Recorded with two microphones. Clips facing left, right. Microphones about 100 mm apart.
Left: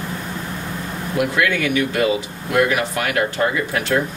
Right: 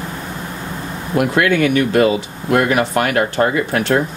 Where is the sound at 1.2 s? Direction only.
45° right (ahead or behind).